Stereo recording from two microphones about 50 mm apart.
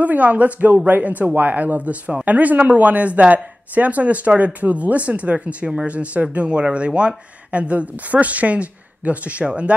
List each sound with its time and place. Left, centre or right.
0.0 s speech: right